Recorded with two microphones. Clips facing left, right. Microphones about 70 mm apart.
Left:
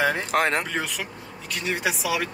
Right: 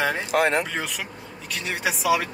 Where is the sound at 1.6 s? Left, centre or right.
Centre.